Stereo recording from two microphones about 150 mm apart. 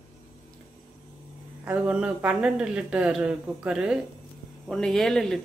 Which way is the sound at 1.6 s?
5° right (ahead or behind).